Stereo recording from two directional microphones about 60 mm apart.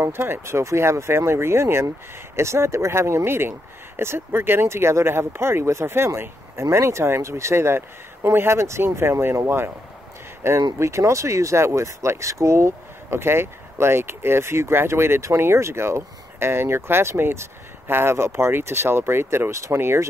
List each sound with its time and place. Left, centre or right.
0.0 s speech: right
19.5 s speech: right